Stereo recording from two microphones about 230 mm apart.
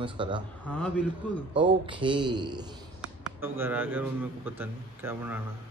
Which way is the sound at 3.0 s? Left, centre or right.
Centre.